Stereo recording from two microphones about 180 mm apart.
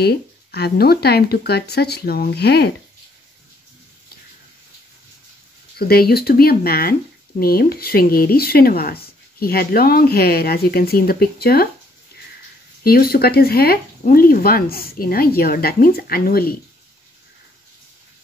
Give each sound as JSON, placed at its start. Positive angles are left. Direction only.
{"t": 0.0, "sound": "speech", "side_deg": 60}
{"t": 5.8, "sound": "speech", "side_deg": 60}
{"t": 12.8, "sound": "speech", "side_deg": 60}